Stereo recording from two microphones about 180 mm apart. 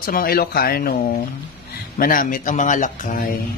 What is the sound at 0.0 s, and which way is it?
Speech, 55° left (ahead or behind).